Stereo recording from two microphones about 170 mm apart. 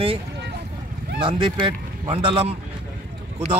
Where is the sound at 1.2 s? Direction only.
30° right (ahead or behind).